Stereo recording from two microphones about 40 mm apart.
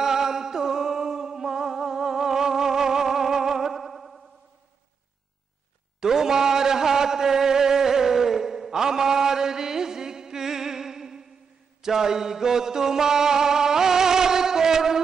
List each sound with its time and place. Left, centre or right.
0.0 s music: centre
5.9 s a sound: centre
11.8 s music: centre